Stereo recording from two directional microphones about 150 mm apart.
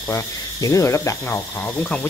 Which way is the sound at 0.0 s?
20° left (ahead or behind).